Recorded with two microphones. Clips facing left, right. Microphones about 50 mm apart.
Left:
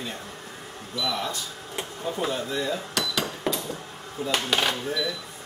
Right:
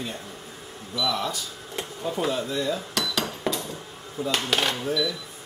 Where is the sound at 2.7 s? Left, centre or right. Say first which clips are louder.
Right 1 dB; centre.